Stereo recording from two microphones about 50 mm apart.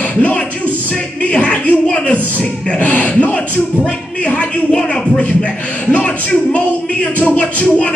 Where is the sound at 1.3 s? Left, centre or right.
Left.